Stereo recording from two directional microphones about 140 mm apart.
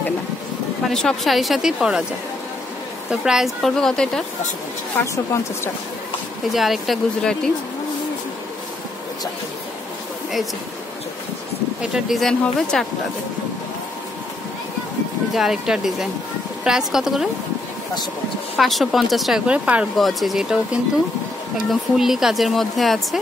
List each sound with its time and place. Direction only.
0.8 s speech: centre (ahead or behind)
3.1 s speech: 5° right (ahead or behind)
5.0 s speech: 20° left (ahead or behind)
6.5 s speech: centre (ahead or behind)
11.8 s speech: 5° right (ahead or behind)
15.3 s speech: 5° right (ahead or behind)
18.6 s speech: centre (ahead or behind)